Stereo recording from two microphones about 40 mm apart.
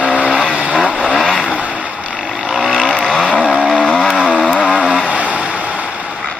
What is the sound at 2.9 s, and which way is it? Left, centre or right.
Vehicle, left.